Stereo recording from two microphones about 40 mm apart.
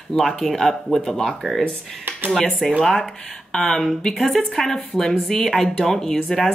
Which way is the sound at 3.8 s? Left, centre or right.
Centre.